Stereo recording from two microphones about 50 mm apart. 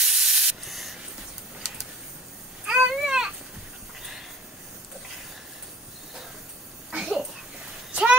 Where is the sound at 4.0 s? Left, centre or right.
Centre.